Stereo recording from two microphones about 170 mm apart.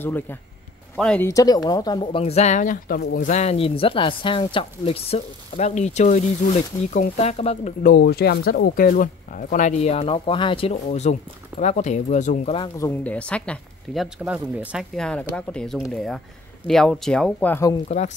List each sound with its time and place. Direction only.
0.0 s speech: 10° left (ahead or behind)
1.3 s speech: 20° left (ahead or behind); by 7.7 s 40° left (ahead or behind)
7.8 s speech: 65° left (ahead or behind); by 12.5 s 45° left (ahead or behind)
12.7 s speech: 15° left (ahead or behind)
14.0 s speech: 5° right (ahead or behind)
17.8 s speech: 45° left (ahead or behind)